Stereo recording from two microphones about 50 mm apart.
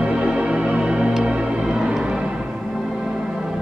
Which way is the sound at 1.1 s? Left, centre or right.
Centre.